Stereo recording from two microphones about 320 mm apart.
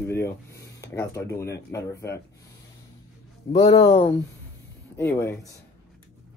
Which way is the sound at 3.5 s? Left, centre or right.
Centre.